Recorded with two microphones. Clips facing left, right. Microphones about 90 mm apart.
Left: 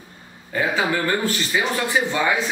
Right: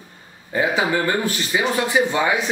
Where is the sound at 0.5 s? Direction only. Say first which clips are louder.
Right 2 dB; 20° right (ahead or behind).